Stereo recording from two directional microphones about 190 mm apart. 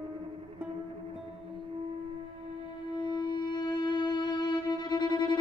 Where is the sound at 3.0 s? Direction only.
25° left (ahead or behind).